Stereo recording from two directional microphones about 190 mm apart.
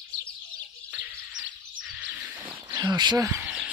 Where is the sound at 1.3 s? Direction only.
85° right.